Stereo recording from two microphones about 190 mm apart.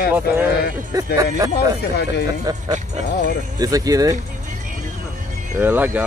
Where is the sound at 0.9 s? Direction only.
20° right (ahead or behind).